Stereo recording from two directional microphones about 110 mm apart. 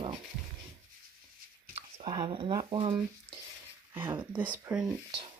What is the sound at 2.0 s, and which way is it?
Speech, 45° right (ahead or behind).